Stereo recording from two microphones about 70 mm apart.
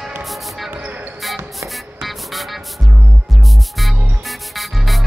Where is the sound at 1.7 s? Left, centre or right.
Centre.